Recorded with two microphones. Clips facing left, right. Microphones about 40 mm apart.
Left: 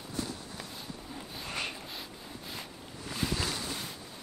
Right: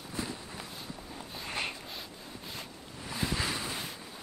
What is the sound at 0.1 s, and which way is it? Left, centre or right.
Clip-clop, right.